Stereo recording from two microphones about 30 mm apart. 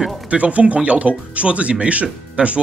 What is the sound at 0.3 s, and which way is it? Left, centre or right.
Speech, right.